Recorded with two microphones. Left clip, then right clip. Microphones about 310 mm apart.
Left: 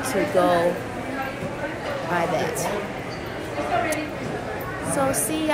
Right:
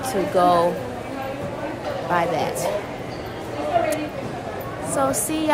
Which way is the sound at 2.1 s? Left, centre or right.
Centre.